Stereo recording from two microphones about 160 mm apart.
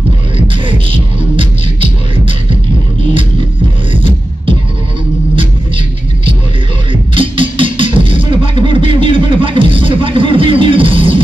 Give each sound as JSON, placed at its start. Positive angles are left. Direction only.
{"t": 0.7, "sound": "music", "side_deg": -30}
{"t": 3.9, "sound": "music", "side_deg": -35}
{"t": 6.9, "sound": "music", "side_deg": -35}